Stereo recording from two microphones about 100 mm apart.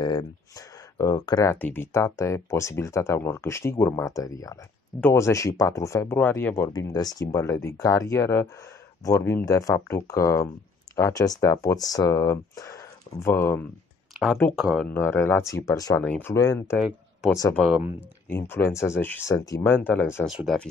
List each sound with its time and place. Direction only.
0.0 s speech: 45° left (ahead or behind)
1.5 s speech: 20° left (ahead or behind)
6.1 s speech: 20° left (ahead or behind)
6.7 s speech: 40° left (ahead or behind); by 13.7 s 25° left (ahead or behind)
14.1 s speech: centre (ahead or behind)
14.9 s speech: 25° left (ahead or behind)
16.0 s speech: 15° left (ahead or behind)
16.3 s speech: 30° left (ahead or behind)
16.7 s speech: 5° right (ahead or behind)
18.3 s speech: 20° left (ahead or behind)
19.7 s speech: 20° left (ahead or behind)
20.2 s speech: 5° right (ahead or behind)